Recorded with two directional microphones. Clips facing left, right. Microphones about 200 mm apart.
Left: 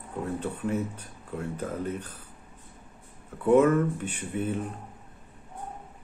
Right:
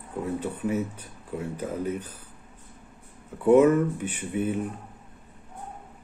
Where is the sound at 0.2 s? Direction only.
5° right (ahead or behind).